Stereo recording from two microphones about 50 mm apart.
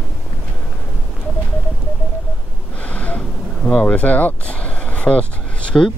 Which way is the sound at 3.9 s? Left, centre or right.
Left.